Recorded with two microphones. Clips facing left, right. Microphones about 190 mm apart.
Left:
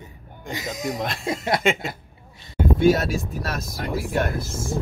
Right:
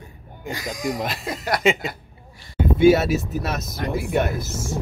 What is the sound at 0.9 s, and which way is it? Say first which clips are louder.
A man's voice: even; centre (ahead or behind).